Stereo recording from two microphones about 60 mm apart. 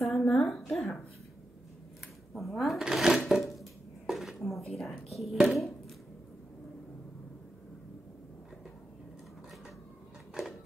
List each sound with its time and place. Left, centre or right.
0.0 s a sound: centre
2.3 s speech: centre
4.1 s dishes: centre
4.7 s speech: centre